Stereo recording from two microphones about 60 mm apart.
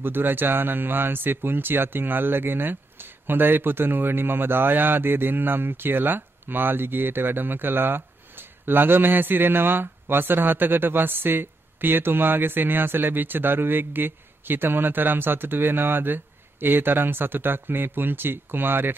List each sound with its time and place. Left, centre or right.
0.0 s speech: right